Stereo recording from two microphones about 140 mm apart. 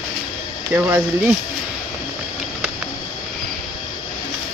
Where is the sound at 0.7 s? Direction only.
15° right (ahead or behind).